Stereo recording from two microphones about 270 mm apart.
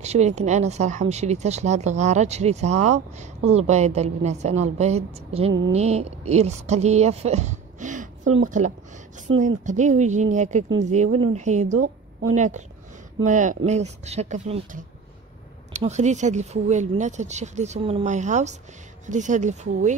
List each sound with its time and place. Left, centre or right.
0.0 s speech: right
8.2 s speech: right
8.5 s speech: right